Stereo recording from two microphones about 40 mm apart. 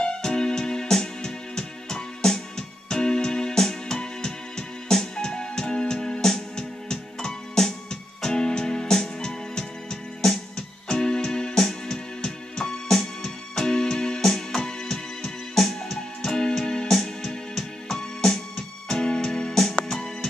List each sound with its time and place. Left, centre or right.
0.0 s music: centre
10.9 s keyboard: centre
18.9 s music: centre